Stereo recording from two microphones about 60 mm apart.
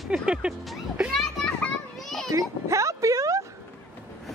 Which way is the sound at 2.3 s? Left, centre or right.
Right.